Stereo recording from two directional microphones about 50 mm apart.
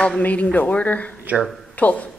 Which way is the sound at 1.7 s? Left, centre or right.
Left.